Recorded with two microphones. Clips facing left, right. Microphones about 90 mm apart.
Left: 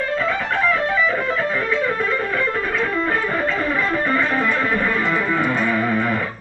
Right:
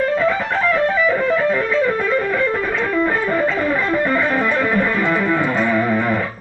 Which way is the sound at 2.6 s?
15° right (ahead or behind).